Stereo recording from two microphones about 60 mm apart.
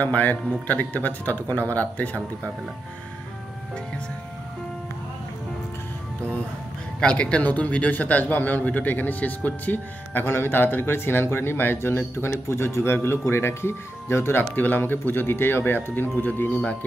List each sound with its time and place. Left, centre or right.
0.0 s speech: left
7.0 s a man's voice: centre; by 14.4 s left
14.5 s a man's voice: left